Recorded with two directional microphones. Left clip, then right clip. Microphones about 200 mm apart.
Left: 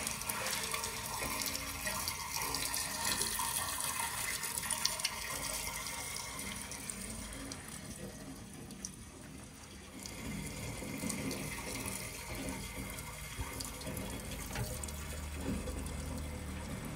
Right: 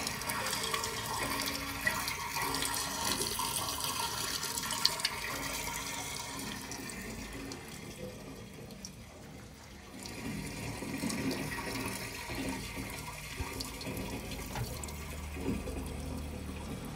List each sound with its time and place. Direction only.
0.0 s water: 50° right (ahead or behind)
11.0 s water: 35° right (ahead or behind)
11.3 s water: 45° right (ahead or behind)